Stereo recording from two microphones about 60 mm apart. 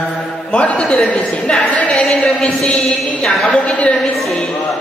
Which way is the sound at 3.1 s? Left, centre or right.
Centre.